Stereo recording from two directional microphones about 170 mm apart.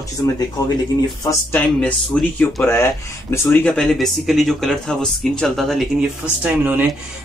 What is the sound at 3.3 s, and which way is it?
Speech, 10° left (ahead or behind).